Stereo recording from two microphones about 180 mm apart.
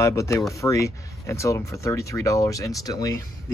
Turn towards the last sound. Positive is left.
turn(degrees=20)  # may be behind; listen again after turning